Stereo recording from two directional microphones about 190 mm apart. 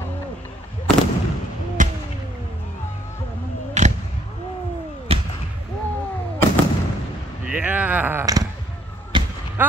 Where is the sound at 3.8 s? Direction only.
40° right (ahead or behind).